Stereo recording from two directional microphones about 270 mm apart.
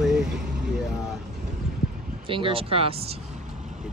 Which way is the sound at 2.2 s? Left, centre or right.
Centre.